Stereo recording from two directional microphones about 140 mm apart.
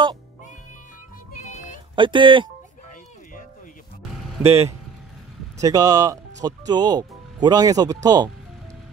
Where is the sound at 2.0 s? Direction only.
35° right (ahead or behind).